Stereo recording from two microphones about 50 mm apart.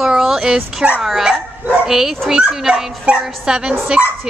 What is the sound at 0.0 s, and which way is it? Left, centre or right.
Dog, centre.